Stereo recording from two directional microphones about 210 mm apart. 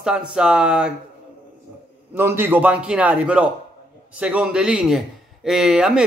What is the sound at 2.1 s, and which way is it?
A man's voice, 10° right (ahead or behind).